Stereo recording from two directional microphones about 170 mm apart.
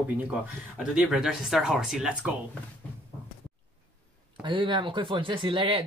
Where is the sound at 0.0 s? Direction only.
10° right (ahead or behind).